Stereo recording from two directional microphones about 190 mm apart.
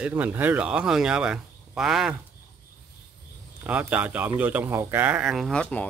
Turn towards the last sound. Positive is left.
turn(degrees=5)  # may be behind; listen again after turning